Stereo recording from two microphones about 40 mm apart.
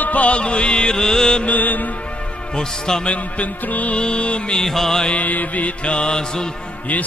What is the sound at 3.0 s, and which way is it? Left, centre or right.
Music, left.